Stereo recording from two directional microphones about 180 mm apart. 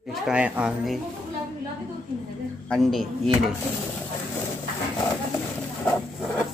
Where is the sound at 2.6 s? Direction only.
Centre (ahead or behind).